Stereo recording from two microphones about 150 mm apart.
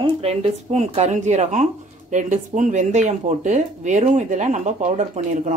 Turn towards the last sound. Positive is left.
turn(degrees=-50)  # may be behind; listen again after turning